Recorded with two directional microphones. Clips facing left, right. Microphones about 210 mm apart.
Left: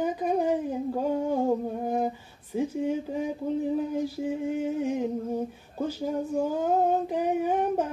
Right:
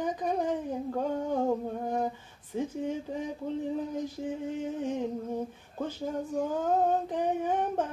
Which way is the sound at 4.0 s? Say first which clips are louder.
Left 5 dB; 10° left (ahead or behind).